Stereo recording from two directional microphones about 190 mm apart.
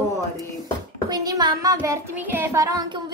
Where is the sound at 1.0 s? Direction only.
20° right (ahead or behind).